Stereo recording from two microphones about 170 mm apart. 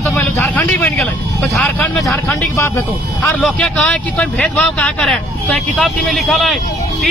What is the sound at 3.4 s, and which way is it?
Speech, 5° left (ahead or behind).